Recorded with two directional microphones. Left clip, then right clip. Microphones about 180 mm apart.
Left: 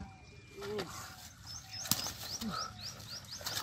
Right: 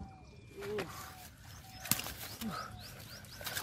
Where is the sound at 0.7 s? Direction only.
Centre (ahead or behind).